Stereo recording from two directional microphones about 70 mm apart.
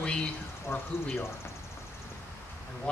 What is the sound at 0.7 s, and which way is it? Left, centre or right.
Mantra, left.